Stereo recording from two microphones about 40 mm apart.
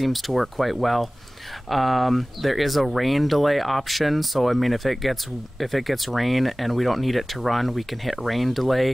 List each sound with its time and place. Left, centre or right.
0.0 s speech: centre